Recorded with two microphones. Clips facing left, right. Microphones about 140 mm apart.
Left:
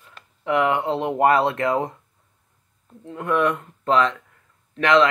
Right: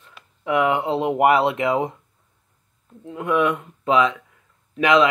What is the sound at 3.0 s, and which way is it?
Speech, 10° right (ahead or behind).